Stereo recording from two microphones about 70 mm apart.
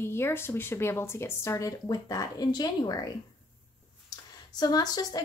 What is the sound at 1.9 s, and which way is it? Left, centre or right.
Speech, left.